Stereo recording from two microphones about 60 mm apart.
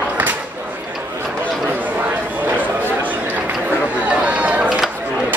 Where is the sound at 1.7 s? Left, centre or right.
Right.